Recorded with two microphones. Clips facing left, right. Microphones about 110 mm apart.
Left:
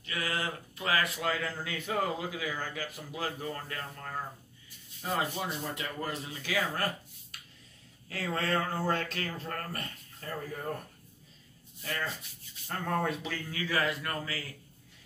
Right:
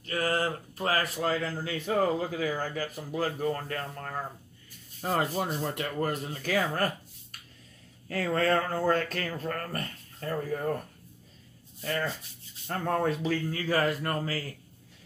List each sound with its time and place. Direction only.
0.0 s speech: 40° right (ahead or behind)
8.1 s speech: 45° right (ahead or behind)
12.6 s a man's voice: 40° right (ahead or behind)